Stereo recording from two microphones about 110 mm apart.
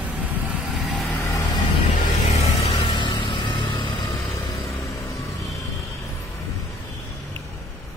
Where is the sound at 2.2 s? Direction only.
70° left (ahead or behind); by 3.1 s 50° left (ahead or behind).